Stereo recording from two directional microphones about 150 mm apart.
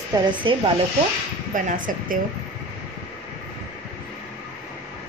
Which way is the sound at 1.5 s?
65° right (ahead or behind).